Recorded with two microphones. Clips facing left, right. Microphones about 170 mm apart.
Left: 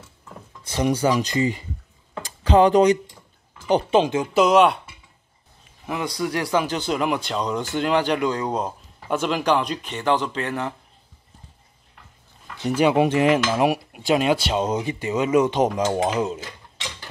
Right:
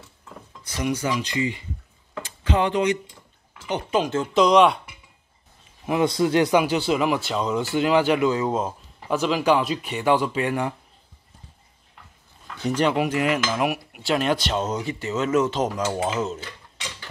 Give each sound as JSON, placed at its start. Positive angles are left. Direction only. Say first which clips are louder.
{"t": 0.7, "sound": "speech", "louder": "left 5 dB", "side_deg": 30}
{"t": 2.2, "sound": "a sound", "louder": "left 7 dB", "side_deg": 35}
{"t": 3.6, "sound": "cutlery", "louder": "left 5 dB", "side_deg": 30}
{"t": 4.1, "sound": "speech", "louder": "even", "side_deg": 10}
{"t": 5.9, "sound": "a man's voice", "louder": "right 5 dB", "side_deg": -25}
{"t": 6.6, "sound": "speech", "louder": "right 2 dB", "side_deg": -5}
{"t": 12.6, "sound": "speech", "louder": "left 3 dB", "side_deg": 10}
{"t": 12.9, "sound": "cutlery", "louder": "left 5 dB", "side_deg": 25}
{"t": 14.0, "sound": "speech", "louder": "left 3 dB", "side_deg": 10}